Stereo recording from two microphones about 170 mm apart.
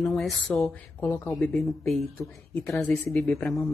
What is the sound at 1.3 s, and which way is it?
A woman's voice, centre (ahead or behind).